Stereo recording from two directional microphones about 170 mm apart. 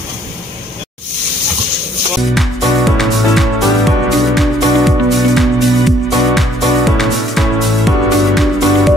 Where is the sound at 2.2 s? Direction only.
Centre (ahead or behind).